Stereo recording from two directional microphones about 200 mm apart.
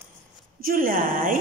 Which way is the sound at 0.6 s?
45° right (ahead or behind).